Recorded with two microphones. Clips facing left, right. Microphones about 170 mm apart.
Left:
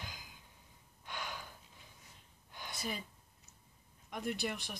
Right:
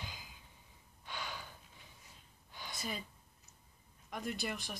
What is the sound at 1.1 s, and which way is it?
Gasp, 10° left (ahead or behind).